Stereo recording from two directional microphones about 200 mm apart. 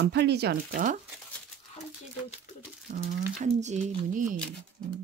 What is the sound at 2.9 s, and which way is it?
Speech, 50° right (ahead or behind).